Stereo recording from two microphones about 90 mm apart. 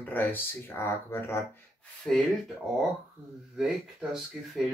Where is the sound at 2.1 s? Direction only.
15° left (ahead or behind).